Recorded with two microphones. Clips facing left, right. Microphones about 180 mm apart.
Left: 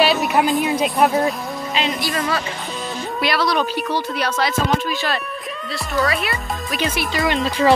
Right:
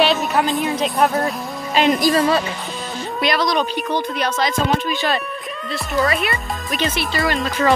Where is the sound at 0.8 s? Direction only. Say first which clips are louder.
Even; centre (ahead or behind).